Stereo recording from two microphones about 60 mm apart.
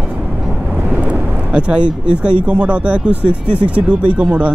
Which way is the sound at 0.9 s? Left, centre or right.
Right.